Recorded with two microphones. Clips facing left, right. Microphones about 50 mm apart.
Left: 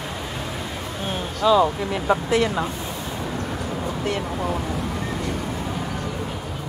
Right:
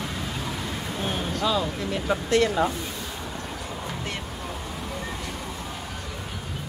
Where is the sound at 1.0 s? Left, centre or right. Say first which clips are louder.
Left 4 dB; centre.